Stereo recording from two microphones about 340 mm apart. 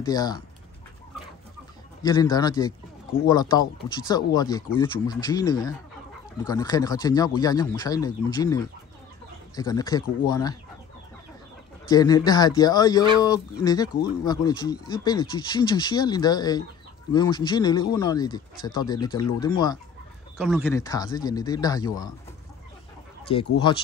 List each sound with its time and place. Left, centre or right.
0.0 s speech: centre
2.0 s speech: centre
11.9 s speech: centre
20.3 s speech: centre
23.2 s speech: centre